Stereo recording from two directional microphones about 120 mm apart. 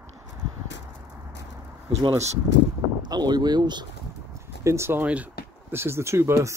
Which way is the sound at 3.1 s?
35° right (ahead or behind).